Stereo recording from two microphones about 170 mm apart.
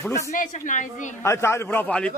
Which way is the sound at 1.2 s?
15° left (ahead or behind).